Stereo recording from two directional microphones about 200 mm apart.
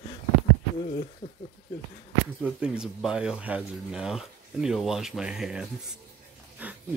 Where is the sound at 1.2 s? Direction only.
25° left (ahead or behind).